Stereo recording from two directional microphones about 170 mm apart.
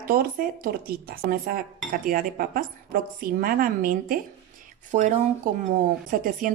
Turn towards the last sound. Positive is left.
turn(degrees=-55)  # may be behind; listen again after turning